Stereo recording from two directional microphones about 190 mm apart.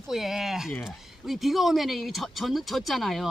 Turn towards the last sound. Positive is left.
turn(degrees=0)  # may be behind; listen again after turning